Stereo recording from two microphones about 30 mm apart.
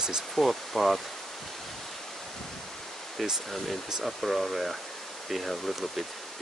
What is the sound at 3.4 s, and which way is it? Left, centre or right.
Speech, centre.